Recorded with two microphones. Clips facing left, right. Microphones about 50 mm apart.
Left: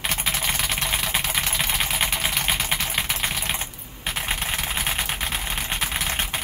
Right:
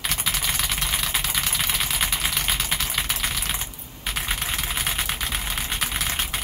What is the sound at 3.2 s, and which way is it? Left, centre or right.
Typing, left.